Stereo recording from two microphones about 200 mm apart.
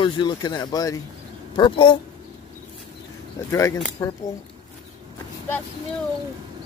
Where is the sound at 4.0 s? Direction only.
15° left (ahead or behind).